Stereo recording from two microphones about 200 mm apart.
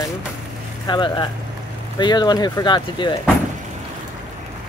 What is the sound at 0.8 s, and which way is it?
Speech, 25° left (ahead or behind).